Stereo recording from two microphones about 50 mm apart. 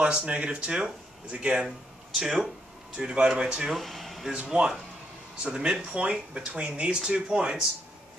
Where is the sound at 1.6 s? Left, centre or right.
Centre.